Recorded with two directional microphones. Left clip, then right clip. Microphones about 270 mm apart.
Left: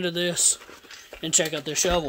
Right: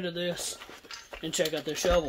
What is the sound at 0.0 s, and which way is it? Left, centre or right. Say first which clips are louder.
Speech: left 8 dB; left.